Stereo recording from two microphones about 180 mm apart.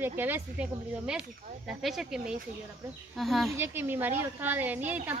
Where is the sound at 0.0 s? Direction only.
10° right (ahead or behind).